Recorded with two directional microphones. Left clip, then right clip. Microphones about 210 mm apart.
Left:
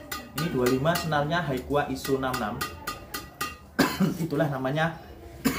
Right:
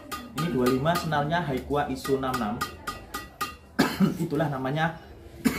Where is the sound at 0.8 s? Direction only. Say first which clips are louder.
Even; 15° left (ahead or behind).